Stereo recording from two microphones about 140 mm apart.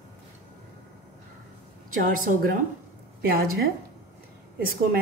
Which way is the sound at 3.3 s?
90° right.